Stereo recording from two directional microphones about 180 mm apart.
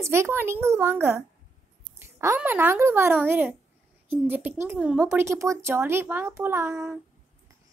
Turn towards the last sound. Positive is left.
turn(degrees=-15)  # may be behind; listen again after turning